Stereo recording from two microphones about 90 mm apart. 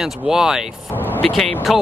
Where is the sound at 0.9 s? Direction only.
20° left (ahead or behind).